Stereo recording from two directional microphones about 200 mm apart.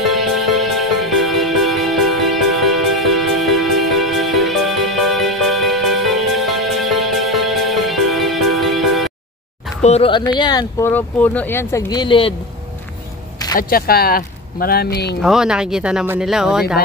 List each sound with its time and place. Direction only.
0.0 s music: centre (ahead or behind)
9.8 s speech: 30° left (ahead or behind)
10.9 s speech: 10° left (ahead or behind); by 12.4 s 25° left (ahead or behind)
13.6 s speech: 45° left (ahead or behind)
15.2 s speech: 5° right (ahead or behind)